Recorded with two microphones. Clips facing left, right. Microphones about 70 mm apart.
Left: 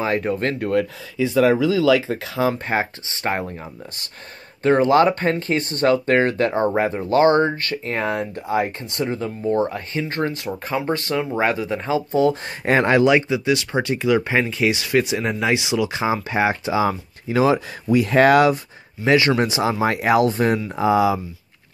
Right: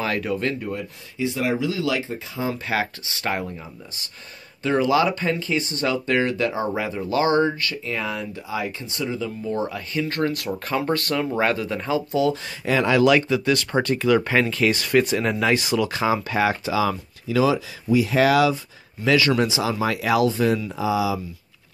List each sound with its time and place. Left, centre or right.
0.0 s speech: left
0.6 s speech: left
2.0 s speech: left
2.6 s speech: left
4.6 s speech: left
12.1 s speech: left
13.0 s speech: left
13.5 s speech: centre
16.0 s speech: left
17.9 s speech: left
19.0 s speech: left